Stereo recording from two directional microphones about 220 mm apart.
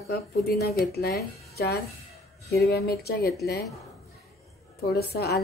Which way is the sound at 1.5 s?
45° left (ahead or behind).